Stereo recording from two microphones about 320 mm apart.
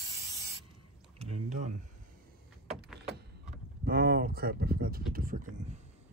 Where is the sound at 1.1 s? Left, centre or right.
Right.